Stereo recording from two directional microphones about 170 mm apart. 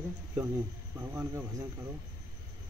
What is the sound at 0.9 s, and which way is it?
Speech, 20° right (ahead or behind).